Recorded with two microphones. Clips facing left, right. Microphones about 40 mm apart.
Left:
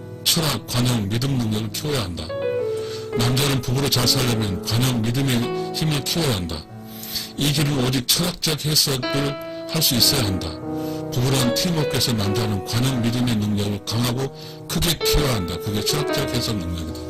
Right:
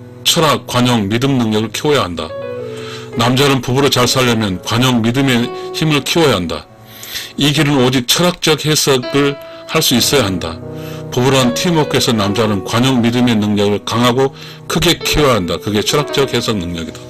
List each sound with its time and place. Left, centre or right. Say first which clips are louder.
0.2 s speech: right 11 dB; right